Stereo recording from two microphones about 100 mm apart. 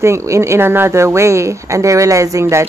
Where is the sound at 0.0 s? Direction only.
30° right (ahead or behind).